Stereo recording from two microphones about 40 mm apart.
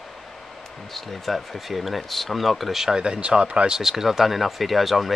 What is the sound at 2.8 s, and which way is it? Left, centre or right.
Speech, centre.